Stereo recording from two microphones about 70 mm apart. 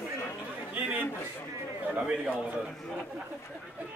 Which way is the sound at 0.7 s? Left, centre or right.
Right.